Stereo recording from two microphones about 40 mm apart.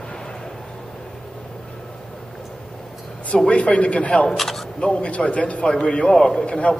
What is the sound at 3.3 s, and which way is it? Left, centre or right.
Speech, left.